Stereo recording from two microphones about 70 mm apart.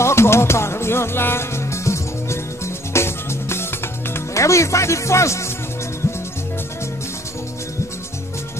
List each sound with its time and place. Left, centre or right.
0.0 s music: left
4.1 s speech: left